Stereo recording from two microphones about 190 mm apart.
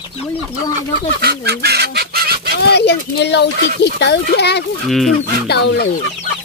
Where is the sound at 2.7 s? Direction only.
60° left (ahead or behind).